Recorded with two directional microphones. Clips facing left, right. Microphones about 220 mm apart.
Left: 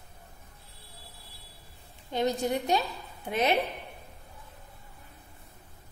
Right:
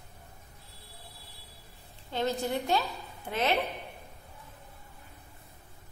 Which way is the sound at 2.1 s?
15° left (ahead or behind).